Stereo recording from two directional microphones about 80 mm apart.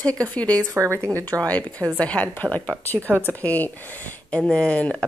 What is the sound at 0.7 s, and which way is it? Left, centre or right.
Speech, right.